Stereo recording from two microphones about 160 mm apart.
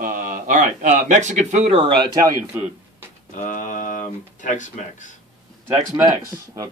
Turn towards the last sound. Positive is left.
turn(degrees=-20)  # may be behind; listen again after turning